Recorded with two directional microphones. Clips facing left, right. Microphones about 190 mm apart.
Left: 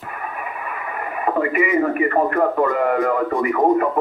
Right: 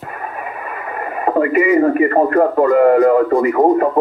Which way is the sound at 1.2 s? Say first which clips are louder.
Right 6 dB; 35° right (ahead or behind).